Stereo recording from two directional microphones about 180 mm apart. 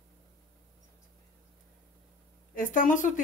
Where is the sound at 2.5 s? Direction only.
50° left (ahead or behind).